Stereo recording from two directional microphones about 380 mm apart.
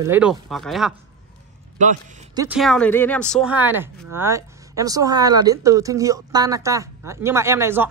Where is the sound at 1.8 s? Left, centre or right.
Centre.